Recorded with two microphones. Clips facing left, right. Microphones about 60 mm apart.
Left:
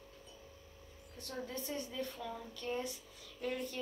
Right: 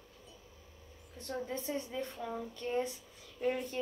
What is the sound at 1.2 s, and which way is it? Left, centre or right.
Speech, right.